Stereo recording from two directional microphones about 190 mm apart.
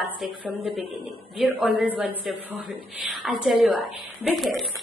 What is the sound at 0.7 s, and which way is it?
Speech, 30° left (ahead or behind).